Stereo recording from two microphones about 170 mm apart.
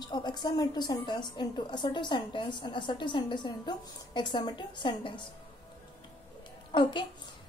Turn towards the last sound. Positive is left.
turn(degrees=30)  # may be behind; listen again after turning